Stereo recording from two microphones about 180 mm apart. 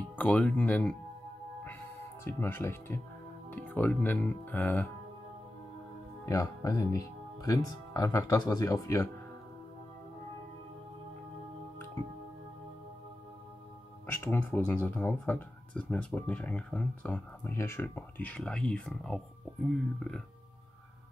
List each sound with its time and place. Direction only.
0.1 s speech: 10° left (ahead or behind)
2.2 s speech: 15° left (ahead or behind)
6.2 s speech: 20° left (ahead or behind)
14.1 s speech: 10° left (ahead or behind)